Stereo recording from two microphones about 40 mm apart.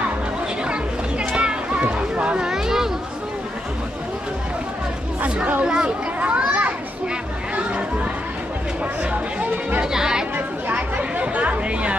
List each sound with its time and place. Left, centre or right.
1.3 s children playing: right
2.4 s a sound: centre
5.2 s speech: right
5.6 s speech: right
6.2 s children playing: right
7.5 s a sound: right
9.1 s music: right
9.9 s chatter: centre
11.0 s chatter: right